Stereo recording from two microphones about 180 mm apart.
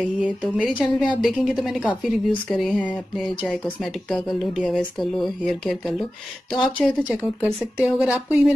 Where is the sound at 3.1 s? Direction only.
5° right (ahead or behind).